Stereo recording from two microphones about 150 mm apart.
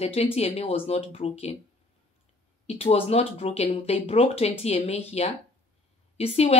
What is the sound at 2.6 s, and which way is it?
A woman's voice, 45° left (ahead or behind).